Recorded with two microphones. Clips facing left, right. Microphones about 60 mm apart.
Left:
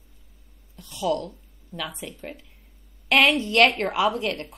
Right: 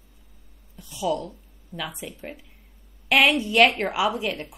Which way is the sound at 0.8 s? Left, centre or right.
Centre.